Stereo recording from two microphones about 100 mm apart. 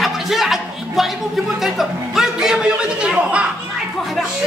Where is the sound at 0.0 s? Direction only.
Centre (ahead or behind).